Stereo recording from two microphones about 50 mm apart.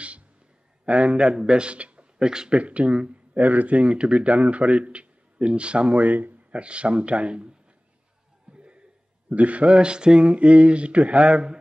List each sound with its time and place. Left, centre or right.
0.8 s speech: right
2.6 s speech: right
6.6 s speech: right
8.5 s chuckle: centre
9.3 s speech: right